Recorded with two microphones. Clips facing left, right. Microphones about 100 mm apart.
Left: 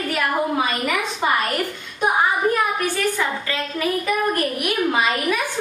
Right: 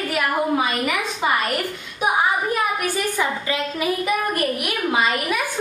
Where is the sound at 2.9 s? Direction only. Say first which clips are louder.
Even; 15° right (ahead or behind).